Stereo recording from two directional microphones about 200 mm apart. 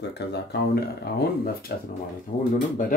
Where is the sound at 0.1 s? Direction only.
60° left (ahead or behind).